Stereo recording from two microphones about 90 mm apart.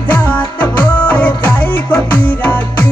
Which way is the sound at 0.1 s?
15° left (ahead or behind).